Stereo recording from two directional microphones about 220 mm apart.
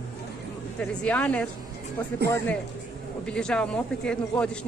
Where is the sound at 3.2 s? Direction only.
5° left (ahead or behind).